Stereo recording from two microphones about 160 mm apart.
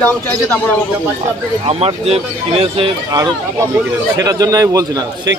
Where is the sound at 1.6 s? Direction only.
40° right (ahead or behind); by 5.0 s 20° right (ahead or behind).